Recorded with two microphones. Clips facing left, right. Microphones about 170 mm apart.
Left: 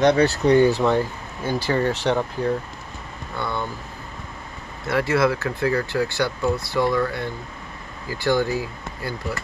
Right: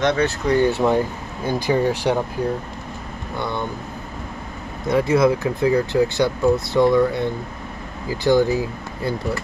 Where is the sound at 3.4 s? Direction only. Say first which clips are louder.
Right 1 dB; 20° right (ahead or behind).